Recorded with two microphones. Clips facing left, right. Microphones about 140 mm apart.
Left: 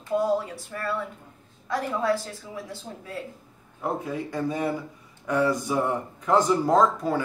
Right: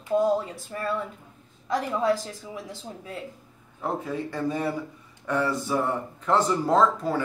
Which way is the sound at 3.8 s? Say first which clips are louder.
Even; 10° left (ahead or behind).